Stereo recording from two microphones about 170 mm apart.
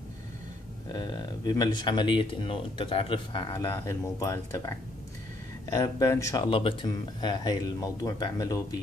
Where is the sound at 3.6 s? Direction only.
15° left (ahead or behind).